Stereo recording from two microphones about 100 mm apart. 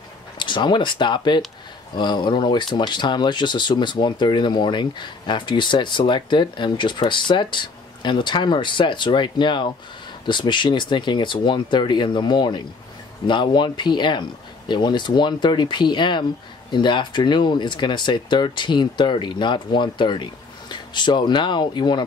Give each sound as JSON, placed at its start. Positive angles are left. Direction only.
{"t": 0.4, "sound": "speech", "side_deg": 50}